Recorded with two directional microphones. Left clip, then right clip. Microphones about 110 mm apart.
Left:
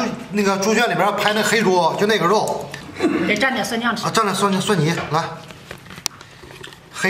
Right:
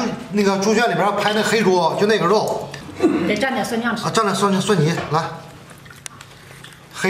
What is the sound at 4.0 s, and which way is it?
A man's voice, 5° left (ahead or behind).